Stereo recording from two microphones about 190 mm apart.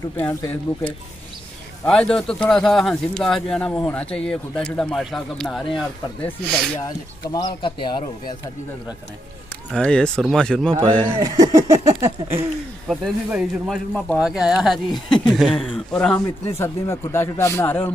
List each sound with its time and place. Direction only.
0.2 s a man's voice: 15° left (ahead or behind)
1.9 s speech: 5° left (ahead or behind)
7.3 s speech: 25° left (ahead or behind)
9.7 s speech: 5° left (ahead or behind)
11.1 s a sound: 20° right (ahead or behind)
12.8 s speech: 5° right (ahead or behind)
16.4 s a man's voice: 15° left (ahead or behind)